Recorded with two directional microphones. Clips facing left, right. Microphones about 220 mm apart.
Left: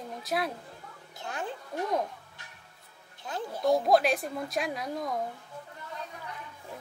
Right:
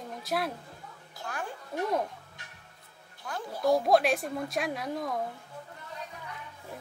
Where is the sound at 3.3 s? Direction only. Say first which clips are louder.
Left 1 dB; 20° left (ahead or behind).